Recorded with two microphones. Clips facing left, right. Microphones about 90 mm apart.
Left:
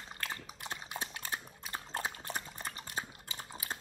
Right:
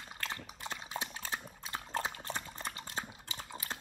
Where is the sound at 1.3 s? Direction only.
15° left (ahead or behind).